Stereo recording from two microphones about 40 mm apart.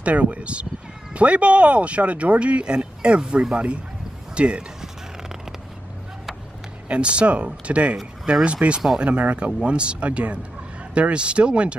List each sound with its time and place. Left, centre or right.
0.0 s speech: right
6.9 s speech: right